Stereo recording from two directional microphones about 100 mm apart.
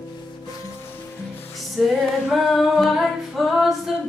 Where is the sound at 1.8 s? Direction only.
Centre (ahead or behind).